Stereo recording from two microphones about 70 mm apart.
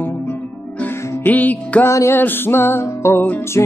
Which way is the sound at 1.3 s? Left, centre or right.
Left.